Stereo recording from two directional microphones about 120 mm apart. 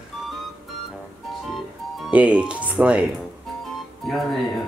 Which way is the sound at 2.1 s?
10° right (ahead or behind).